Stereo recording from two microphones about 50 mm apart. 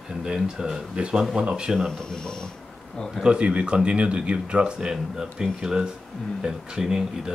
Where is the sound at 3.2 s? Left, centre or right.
Centre.